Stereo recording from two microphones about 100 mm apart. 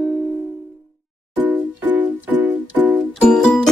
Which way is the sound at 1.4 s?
20° right (ahead or behind).